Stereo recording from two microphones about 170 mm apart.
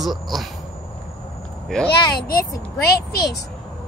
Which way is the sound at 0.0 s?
Centre (ahead or behind).